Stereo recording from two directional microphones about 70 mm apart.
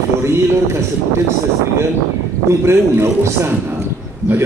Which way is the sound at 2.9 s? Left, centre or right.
Right.